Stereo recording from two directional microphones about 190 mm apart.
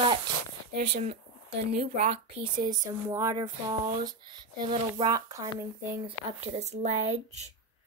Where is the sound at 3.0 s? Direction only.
15° right (ahead or behind).